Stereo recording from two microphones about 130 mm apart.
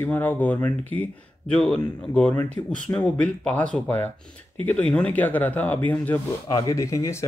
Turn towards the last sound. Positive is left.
turn(degrees=25)  # may be behind; listen again after turning